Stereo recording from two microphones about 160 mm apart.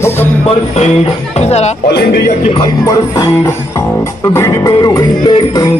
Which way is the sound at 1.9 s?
90° left.